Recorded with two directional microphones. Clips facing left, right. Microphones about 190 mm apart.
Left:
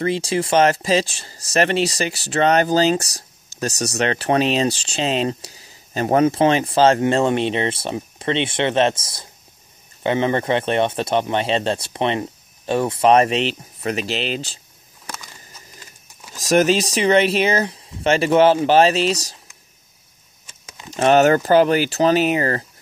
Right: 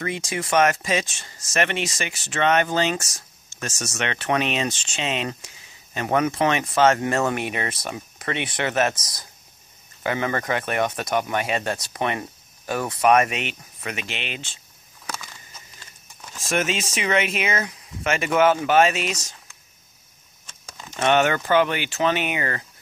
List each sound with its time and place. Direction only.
0.0 s speech: 30° left (ahead or behind)
16.3 s speech: 40° left (ahead or behind)
20.9 s speech: 35° left (ahead or behind)